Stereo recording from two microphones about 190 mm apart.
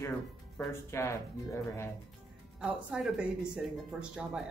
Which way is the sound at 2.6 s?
Centre (ahead or behind).